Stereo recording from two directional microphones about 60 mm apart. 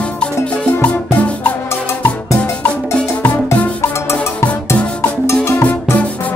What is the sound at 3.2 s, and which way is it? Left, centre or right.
Music, left.